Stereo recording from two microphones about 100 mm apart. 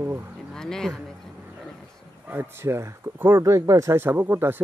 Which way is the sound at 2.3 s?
20° right (ahead or behind).